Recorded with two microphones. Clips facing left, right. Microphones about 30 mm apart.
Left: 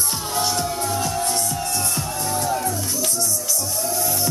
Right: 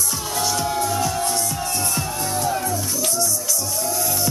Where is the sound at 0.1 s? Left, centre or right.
Left.